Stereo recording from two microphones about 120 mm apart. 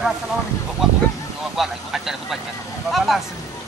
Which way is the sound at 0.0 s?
5° right (ahead or behind).